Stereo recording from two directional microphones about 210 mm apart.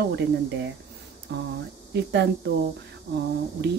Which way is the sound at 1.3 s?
55° right (ahead or behind).